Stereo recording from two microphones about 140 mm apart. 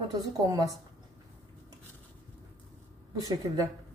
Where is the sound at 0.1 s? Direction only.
25° right (ahead or behind).